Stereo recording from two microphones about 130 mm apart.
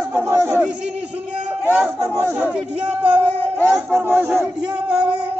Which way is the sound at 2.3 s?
10° right (ahead or behind).